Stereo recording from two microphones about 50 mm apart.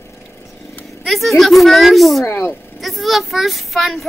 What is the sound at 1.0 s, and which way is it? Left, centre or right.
A child's voice, centre.